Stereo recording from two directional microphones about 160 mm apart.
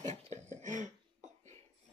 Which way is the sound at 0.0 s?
45° right (ahead or behind).